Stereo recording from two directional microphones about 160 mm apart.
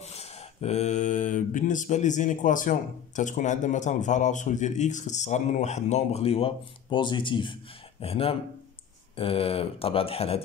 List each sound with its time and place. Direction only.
0.0 s speech: 40° left (ahead or behind)